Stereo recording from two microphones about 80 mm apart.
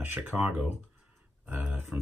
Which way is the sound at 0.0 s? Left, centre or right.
Right.